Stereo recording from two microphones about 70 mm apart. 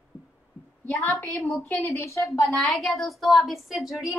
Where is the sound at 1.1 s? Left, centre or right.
Left.